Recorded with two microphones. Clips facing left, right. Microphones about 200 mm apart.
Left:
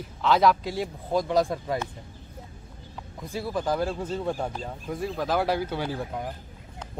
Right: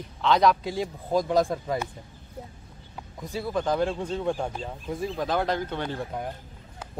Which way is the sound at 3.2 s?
Centre (ahead or behind).